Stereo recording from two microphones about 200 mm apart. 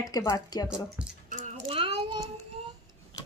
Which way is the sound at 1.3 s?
30° right (ahead or behind).